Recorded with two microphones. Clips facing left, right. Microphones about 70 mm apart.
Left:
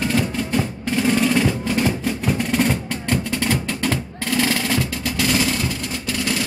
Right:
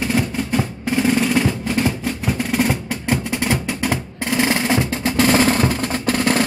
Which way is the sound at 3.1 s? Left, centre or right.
Centre.